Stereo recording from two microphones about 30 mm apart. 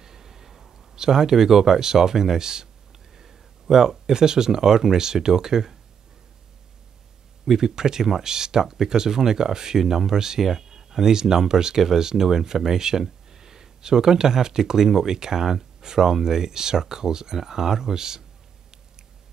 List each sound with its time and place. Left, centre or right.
0.0 s a sound: centre
0.7 s speech: right
7.4 s speech: centre